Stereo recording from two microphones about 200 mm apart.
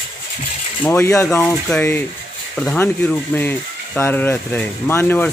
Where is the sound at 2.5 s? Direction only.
10° left (ahead or behind).